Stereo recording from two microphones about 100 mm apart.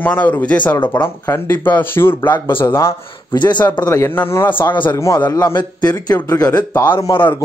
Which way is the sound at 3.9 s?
25° left (ahead or behind).